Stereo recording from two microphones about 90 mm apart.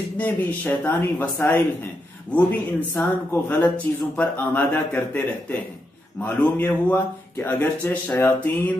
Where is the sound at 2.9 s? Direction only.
20° left (ahead or behind).